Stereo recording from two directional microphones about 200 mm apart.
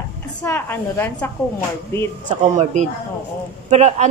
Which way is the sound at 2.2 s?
35° right (ahead or behind).